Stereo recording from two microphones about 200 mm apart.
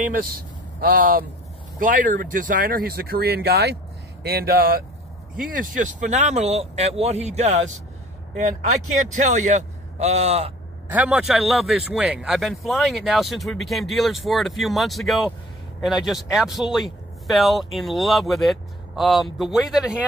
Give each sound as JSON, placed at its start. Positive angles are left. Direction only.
{"t": 0.7, "sound": "speech", "side_deg": -45}
{"t": 10.9, "sound": "speech", "side_deg": -5}